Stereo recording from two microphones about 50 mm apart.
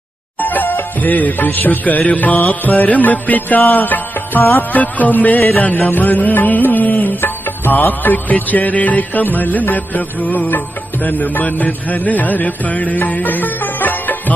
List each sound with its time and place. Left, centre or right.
0.4 s music: left